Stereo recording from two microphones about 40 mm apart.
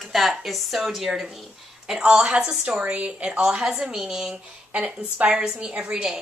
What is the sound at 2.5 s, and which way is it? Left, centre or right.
Speech, right.